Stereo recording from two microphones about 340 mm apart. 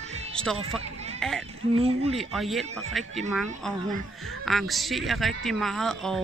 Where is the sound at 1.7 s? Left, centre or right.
Centre.